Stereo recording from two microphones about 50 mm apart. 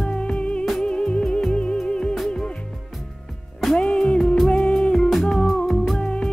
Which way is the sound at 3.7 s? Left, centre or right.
Centre.